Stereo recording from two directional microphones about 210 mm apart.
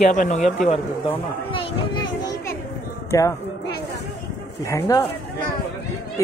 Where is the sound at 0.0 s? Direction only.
35° left (ahead or behind).